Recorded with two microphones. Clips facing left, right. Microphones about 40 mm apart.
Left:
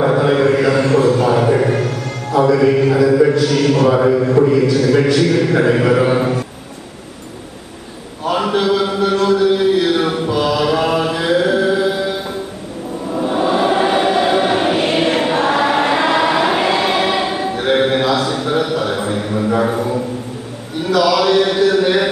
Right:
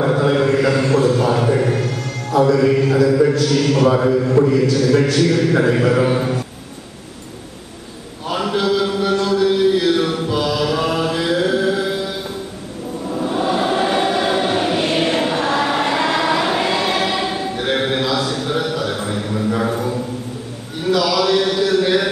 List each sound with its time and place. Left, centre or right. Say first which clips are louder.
0.0 s mantra: left 3 dB; centre
5.0 s a man's voice: left 2 dB; centre
8.3 s mantra: left 3 dB; centre
11.5 s music: left 3 dB; centre
13.1 s choir: left 3 dB; left
18.8 s a sound: left 3 dB; left